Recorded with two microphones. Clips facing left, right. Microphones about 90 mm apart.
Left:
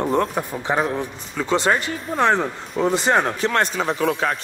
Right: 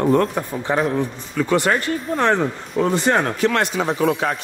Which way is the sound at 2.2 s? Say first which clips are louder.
Left 1 dB; 5° left (ahead or behind).